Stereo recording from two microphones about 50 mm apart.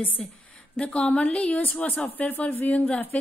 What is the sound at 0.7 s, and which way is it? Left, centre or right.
A woman's voice, left.